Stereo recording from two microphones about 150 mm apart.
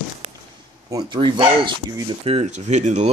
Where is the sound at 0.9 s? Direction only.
30° right (ahead or behind).